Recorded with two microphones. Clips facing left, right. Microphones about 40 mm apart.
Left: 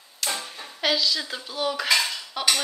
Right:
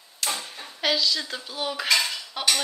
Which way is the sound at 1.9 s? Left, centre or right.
Centre.